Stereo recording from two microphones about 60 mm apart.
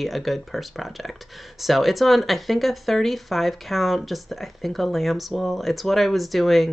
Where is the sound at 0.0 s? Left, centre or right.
Centre.